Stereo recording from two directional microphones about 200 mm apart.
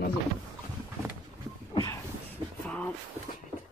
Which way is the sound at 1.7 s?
20° left (ahead or behind).